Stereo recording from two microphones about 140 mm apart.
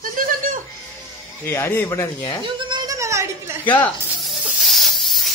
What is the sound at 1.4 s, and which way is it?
Speech, 15° left (ahead or behind).